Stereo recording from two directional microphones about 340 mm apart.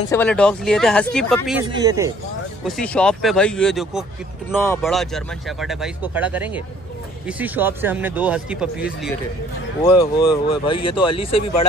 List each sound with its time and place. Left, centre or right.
0.1 s speech: centre
1.7 s a man's voice: centre
2.6 s speech: centre
9.8 s speech: centre